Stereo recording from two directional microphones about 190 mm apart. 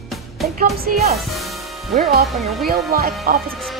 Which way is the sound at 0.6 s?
50° right (ahead or behind).